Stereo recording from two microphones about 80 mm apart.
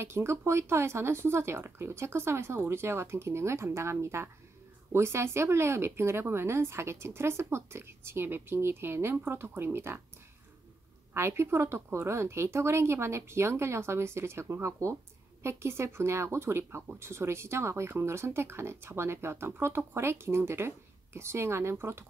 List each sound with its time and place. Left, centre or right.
0.0 s speech: right
11.1 s speech: right